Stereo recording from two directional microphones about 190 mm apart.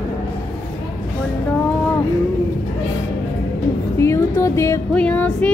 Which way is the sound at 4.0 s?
15° left (ahead or behind).